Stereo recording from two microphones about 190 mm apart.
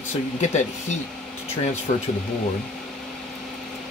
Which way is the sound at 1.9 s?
40° left (ahead or behind).